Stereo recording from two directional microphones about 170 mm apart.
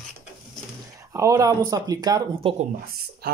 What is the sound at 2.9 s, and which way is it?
Speech, 65° right (ahead or behind).